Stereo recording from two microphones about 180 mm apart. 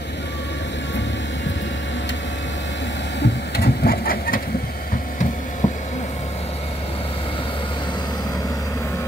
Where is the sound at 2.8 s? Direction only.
80° left; by 4.4 s 55° left (ahead or behind).